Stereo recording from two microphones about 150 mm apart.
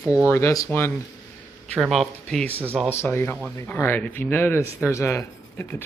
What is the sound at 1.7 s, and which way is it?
Speech, centre (ahead or behind).